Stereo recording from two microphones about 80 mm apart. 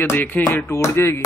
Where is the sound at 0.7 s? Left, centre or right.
Left.